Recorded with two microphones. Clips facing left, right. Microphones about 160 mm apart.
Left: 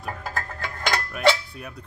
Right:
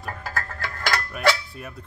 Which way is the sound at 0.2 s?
20° left (ahead or behind).